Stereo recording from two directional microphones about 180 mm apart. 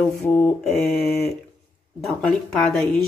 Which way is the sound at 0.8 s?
60° left (ahead or behind).